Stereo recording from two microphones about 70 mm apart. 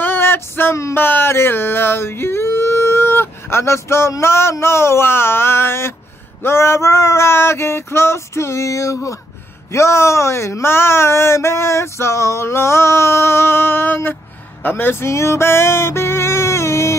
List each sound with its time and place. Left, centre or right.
0.0 s female singing: left
0.9 s a sound: left
4.2 s speech: left
14.6 s music: left